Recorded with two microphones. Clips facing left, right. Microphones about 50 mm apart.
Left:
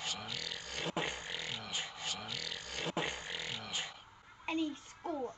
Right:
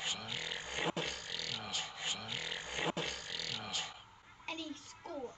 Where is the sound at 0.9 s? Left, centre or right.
Left.